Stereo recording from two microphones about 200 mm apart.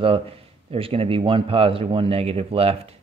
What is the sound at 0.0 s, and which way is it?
Speech, 30° right (ahead or behind).